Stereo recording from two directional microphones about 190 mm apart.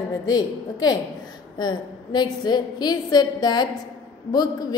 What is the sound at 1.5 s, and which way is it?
A woman's voice, 20° left (ahead or behind).